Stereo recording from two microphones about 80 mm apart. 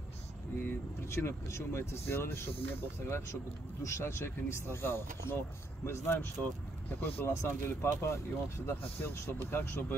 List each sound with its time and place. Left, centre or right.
0.6 s speech: left